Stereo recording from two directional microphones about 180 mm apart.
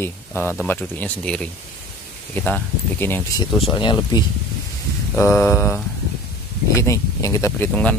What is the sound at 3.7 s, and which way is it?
Speech, 25° left (ahead or behind).